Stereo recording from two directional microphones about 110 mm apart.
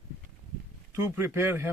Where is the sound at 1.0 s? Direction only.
25° right (ahead or behind).